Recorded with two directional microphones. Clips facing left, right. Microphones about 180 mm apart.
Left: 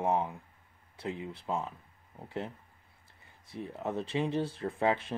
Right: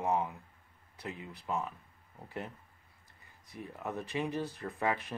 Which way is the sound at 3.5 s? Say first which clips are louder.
Left 4 dB; 25° left (ahead or behind).